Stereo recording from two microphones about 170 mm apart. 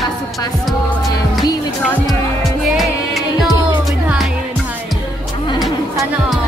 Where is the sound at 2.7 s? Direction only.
Centre (ahead or behind).